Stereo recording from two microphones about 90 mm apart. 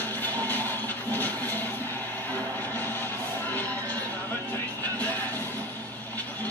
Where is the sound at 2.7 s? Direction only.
20° left (ahead or behind).